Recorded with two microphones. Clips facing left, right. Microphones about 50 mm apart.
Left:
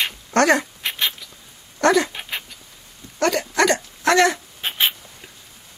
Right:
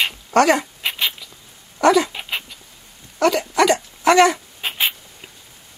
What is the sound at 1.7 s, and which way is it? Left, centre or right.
Dog, centre.